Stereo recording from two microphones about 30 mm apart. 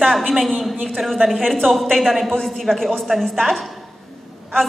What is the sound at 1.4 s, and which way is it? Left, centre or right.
A woman's voice, centre.